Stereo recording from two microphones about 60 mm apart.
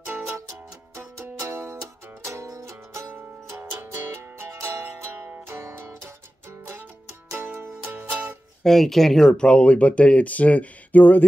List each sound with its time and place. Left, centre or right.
1.5 s music: right
2.7 s music: right
7.3 s music: right
8.6 s speech: centre
9.3 s speech: centre